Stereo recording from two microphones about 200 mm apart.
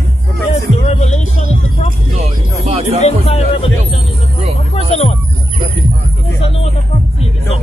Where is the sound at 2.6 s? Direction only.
30° right (ahead or behind).